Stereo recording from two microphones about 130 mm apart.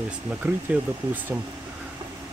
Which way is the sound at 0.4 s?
15° right (ahead or behind).